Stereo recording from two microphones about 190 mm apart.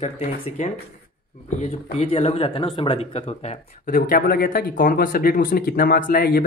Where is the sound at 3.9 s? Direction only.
50° left (ahead or behind).